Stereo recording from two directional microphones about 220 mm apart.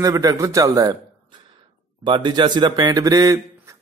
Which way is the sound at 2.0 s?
20° right (ahead or behind).